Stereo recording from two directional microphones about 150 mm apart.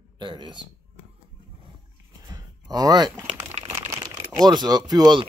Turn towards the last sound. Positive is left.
turn(degrees=-30)  # may be behind; listen again after turning